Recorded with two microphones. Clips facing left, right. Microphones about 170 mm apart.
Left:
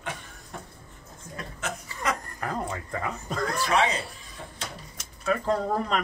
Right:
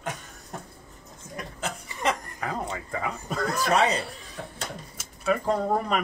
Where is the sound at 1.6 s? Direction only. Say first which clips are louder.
Right 2 dB; 25° right (ahead or behind).